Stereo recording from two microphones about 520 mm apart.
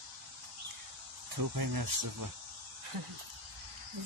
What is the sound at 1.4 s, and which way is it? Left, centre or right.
Speech, right.